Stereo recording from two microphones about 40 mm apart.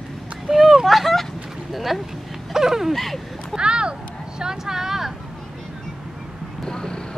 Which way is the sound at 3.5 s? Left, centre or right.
Right.